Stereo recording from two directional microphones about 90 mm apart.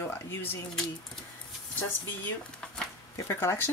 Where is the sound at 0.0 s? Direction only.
30° left (ahead or behind).